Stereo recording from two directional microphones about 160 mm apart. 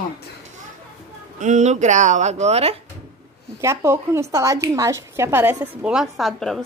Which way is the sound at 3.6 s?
15° right (ahead or behind).